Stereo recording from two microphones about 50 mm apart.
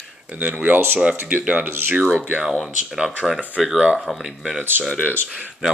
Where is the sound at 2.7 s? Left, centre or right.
Centre.